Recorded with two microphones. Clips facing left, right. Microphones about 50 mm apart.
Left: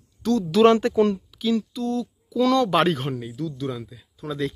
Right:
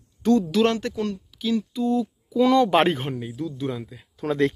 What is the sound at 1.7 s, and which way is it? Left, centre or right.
Speech, centre.